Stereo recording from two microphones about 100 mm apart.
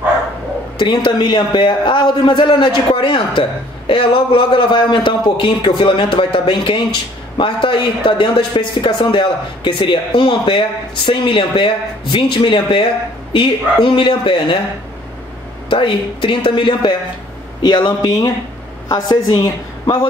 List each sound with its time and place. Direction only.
0.7 s a man's voice: 50° left (ahead or behind)
13.8 s a man's voice: 60° left (ahead or behind)
15.7 s a man's voice: 55° left (ahead or behind)